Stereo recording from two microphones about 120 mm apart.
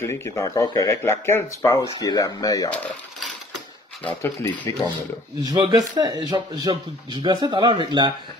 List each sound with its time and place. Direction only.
0.0 s speech: 25° left (ahead or behind)
1.6 s speech: 35° left (ahead or behind)
4.0 s speech: 20° left (ahead or behind)
5.7 s speech: 30° right (ahead or behind)